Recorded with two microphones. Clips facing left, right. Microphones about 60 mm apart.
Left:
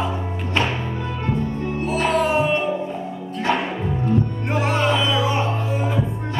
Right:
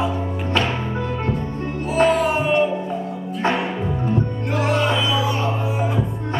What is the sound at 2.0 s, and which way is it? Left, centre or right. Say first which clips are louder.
Music: left 3 dB; centre.